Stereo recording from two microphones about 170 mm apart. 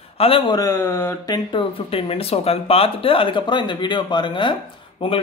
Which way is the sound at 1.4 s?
30° left (ahead or behind).